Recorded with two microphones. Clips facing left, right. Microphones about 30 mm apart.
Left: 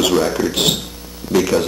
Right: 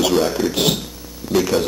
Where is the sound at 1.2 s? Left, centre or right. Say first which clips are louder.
Left 2 dB; centre.